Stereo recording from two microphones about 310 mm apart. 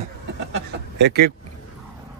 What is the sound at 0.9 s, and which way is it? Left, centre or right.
Speech, right.